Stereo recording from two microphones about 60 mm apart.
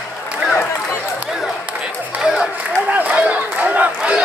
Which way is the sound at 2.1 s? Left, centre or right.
Centre.